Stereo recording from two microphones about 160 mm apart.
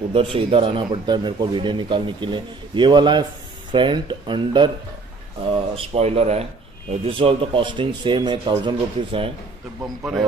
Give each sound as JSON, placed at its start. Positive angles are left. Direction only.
{"t": 0.1, "sound": "speech", "side_deg": -35}